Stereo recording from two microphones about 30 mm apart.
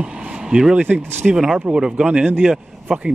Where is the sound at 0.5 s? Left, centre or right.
Right.